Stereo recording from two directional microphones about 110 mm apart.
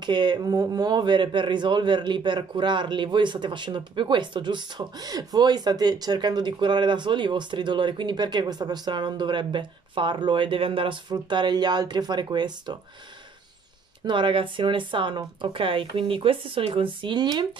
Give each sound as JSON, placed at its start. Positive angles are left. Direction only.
{"t": 0.0, "sound": "speech", "side_deg": -40}
{"t": 14.0, "sound": "speech", "side_deg": -50}